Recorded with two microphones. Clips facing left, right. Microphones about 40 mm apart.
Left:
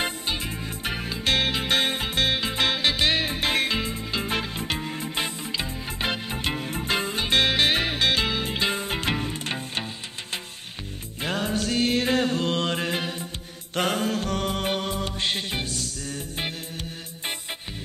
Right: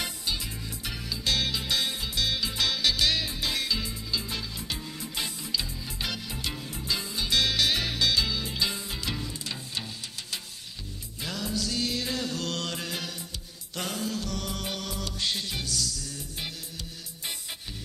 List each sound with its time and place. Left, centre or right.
0.0 s music: left
11.2 s music: left